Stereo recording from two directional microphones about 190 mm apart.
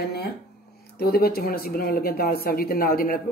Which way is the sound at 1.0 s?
55° left (ahead or behind).